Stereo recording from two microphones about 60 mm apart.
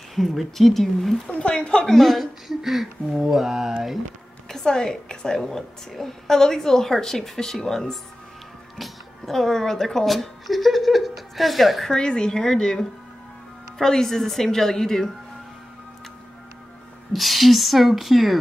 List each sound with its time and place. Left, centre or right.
0.1 s speech: centre
1.3 s a woman's voice: centre
2.0 s speech: centre
4.5 s a woman's voice: centre
11.9 s a woman's voice: centre
17.1 s speech: centre